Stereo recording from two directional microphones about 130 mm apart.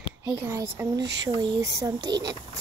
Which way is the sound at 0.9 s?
30° right (ahead or behind).